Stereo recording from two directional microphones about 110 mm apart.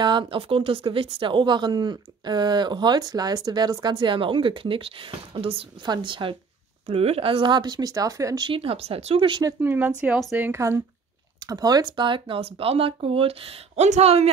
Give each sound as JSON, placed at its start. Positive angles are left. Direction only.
{"t": 0.0, "sound": "a woman's voice", "side_deg": -45}
{"t": 5.8, "sound": "a woman's voice", "side_deg": -45}
{"t": 6.9, "sound": "speech", "side_deg": -65}
{"t": 8.5, "sound": "speech", "side_deg": -55}
{"t": 9.6, "sound": "speech", "side_deg": -15}
{"t": 11.3, "sound": "speech", "side_deg": -35}